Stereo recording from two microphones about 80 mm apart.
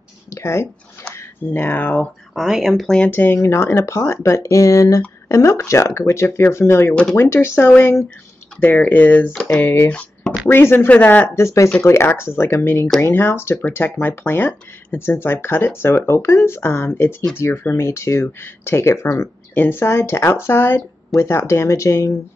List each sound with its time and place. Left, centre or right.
0.3 s a sound: left
1.1 s speech: left
2.3 s speech: centre
3.1 s speech: left
9.3 s speech: centre
9.8 s a sound: centre
10.5 s speech: left
10.9 s speech: centre
11.3 s speech: left